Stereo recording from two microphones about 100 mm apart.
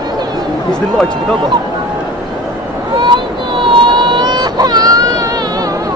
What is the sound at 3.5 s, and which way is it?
Baby cry, 55° right (ahead or behind).